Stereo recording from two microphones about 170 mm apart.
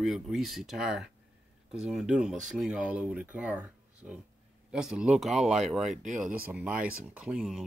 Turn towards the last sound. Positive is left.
turn(degrees=-5)  # may be behind; listen again after turning